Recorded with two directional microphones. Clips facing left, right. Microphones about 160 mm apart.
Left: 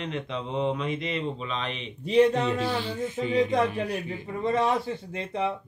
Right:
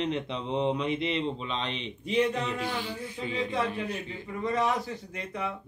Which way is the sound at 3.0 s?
20° left (ahead or behind).